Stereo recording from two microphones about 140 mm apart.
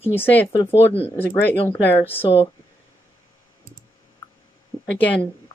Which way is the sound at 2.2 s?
45° left (ahead or behind).